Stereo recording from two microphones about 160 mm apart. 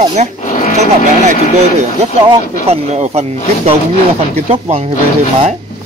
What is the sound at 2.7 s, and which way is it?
Speech, 45° right (ahead or behind).